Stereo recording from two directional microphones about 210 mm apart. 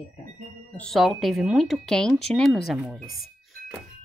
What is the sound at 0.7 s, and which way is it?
Speech, centre (ahead or behind).